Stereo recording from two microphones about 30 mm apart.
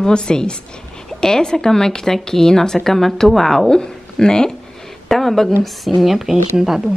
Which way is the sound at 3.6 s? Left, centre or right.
Left.